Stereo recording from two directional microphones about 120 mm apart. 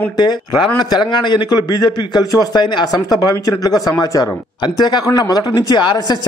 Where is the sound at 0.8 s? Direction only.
40° left (ahead or behind).